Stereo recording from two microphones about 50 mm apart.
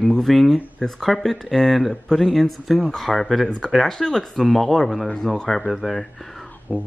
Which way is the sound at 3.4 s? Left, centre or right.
Centre.